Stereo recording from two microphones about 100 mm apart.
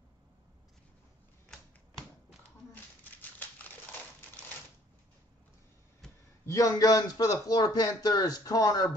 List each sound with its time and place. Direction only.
2.7 s crumpling: 20° left (ahead or behind)
6.4 s speech: 35° left (ahead or behind)